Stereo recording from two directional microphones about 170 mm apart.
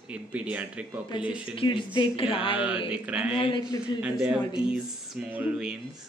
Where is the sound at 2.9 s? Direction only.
5° right (ahead or behind).